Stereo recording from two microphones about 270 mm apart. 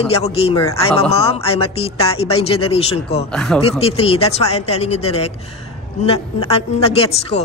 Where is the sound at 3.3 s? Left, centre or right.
Centre.